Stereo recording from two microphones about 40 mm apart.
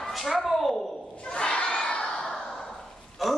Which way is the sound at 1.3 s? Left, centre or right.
Left.